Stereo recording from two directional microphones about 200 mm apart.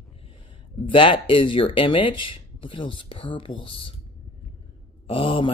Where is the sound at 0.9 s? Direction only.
25° left (ahead or behind).